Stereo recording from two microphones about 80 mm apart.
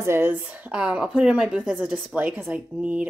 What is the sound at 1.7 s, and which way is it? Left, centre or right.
Speech, centre.